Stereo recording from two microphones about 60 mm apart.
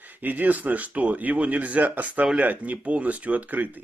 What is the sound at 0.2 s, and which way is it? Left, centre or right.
Speech, right.